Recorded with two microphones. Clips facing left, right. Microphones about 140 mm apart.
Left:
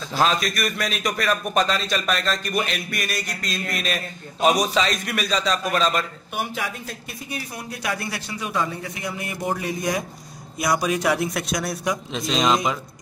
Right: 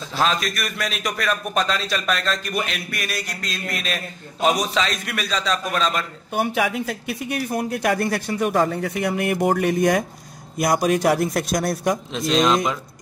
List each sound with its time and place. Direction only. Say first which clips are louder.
0.1 s a man's voice: left 1 dB; centre (ahead or behind)
6.4 s speech: right 8 dB; 85° right; by 10.0 s 60° right (ahead or behind)
10.6 s a man's voice: right 3 dB; 50° right (ahead or behind)
12.1 s a man's voice: right 2 dB; centre (ahead or behind)